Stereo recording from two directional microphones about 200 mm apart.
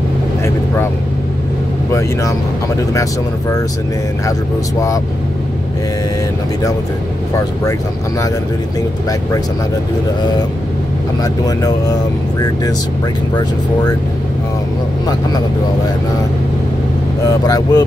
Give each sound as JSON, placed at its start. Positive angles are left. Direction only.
{"t": 2.9, "sound": "speech", "side_deg": 15}
{"t": 17.3, "sound": "speech", "side_deg": 20}